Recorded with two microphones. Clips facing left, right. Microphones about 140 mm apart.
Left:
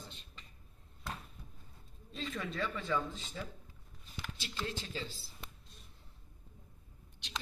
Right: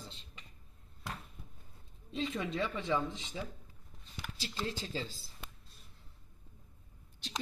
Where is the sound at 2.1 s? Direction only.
25° right (ahead or behind).